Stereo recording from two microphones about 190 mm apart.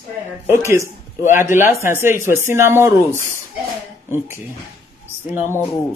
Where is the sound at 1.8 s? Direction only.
10° right (ahead or behind).